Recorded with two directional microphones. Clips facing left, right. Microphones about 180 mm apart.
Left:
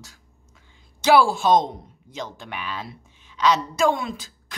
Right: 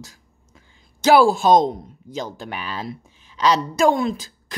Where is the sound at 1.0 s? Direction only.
40° right (ahead or behind).